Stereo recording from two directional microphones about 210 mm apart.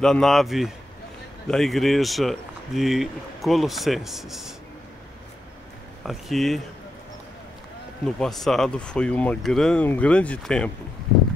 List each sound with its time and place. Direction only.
0.0 s speech: centre (ahead or behind)
6.0 s speech: centre (ahead or behind)
8.2 s speech: centre (ahead or behind)